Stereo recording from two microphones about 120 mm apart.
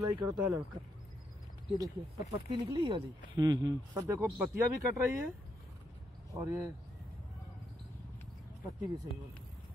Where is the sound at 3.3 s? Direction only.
35° right (ahead or behind).